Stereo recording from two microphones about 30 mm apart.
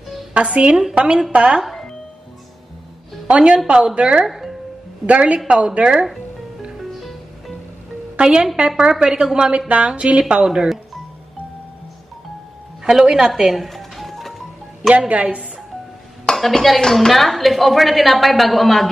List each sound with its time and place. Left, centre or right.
0.3 s a woman's voice: right
3.3 s a woman's voice: right
4.2 s music: centre
5.0 s a woman's voice: right
7.0 s music: centre
8.2 s a woman's voice: right
9.7 s a woman's voice: right
10.4 s a woman's voice: right
12.8 s a woman's voice: centre
13.4 s music: centre
15.0 s a woman's voice: right
16.5 s a woman's voice: centre